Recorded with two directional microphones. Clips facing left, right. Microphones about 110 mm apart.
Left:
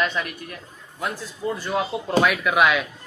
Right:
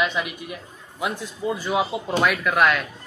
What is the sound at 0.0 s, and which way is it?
A man's voice, 10° right (ahead or behind).